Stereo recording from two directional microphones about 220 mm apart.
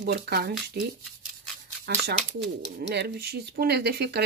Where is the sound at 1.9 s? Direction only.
50° right (ahead or behind).